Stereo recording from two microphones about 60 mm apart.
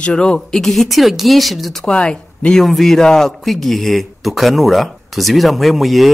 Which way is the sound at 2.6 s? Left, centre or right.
Centre.